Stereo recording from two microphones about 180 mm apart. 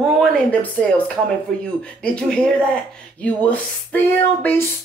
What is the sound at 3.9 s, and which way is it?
Speech, 10° left (ahead or behind).